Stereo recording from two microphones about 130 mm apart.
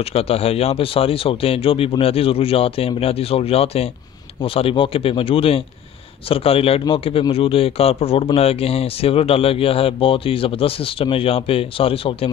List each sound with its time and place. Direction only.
0.1 s speech: 50° left (ahead or behind)